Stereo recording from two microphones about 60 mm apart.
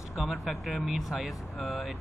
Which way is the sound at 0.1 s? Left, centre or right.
Centre.